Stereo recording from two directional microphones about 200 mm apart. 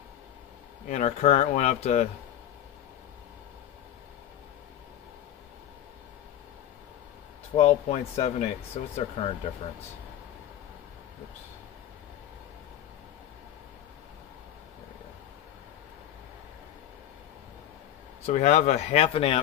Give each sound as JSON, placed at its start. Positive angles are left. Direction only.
{"t": 0.8, "sound": "speech", "side_deg": 35}
{"t": 7.5, "sound": "speech", "side_deg": 30}
{"t": 18.2, "sound": "speech", "side_deg": 35}